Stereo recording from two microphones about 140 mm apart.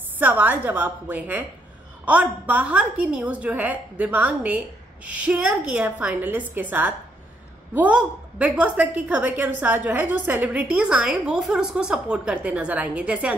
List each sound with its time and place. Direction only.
0.2 s a woman's voice: 10° right (ahead or behind)